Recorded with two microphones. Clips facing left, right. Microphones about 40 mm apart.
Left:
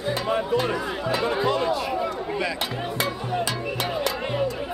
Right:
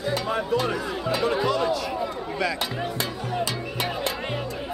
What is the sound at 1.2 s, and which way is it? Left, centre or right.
Speech, left.